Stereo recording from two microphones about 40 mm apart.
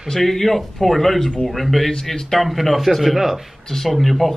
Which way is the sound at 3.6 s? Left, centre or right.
Centre.